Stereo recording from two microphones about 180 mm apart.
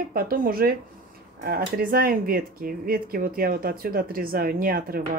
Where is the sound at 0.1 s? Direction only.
55° right (ahead or behind).